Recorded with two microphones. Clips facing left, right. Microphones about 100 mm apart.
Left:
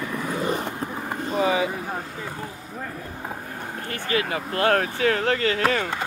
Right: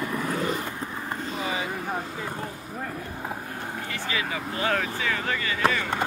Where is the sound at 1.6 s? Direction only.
5° left (ahead or behind).